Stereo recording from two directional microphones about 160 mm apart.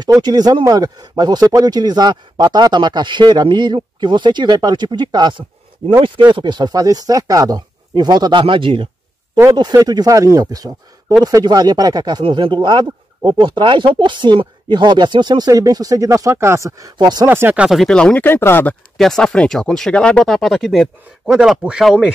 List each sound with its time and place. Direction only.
0.0 s speech: 25° right (ahead or behind)
17.3 s speech: 15° right (ahead or behind)
17.6 s speech: centre (ahead or behind)
18.9 s speech: 5° left (ahead or behind)